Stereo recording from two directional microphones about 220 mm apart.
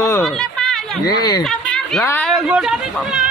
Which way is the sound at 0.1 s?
Centre (ahead or behind).